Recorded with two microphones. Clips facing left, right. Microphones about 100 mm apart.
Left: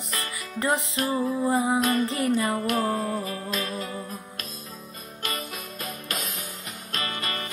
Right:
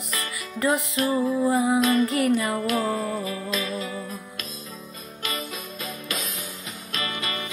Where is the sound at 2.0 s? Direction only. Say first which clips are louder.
Right 2 dB; 30° left (ahead or behind).